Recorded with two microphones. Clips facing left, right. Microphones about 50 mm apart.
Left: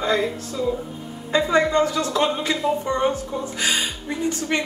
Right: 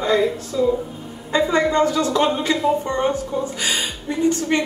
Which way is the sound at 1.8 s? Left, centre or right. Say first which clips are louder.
Right 3 dB; centre.